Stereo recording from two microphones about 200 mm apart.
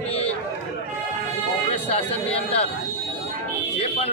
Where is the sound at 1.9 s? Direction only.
30° left (ahead or behind).